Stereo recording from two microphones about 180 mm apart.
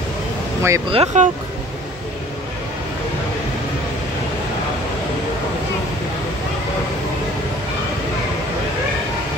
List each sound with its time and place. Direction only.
0.6 s speech: 15° right (ahead or behind)
0.9 s speech: 40° right (ahead or behind)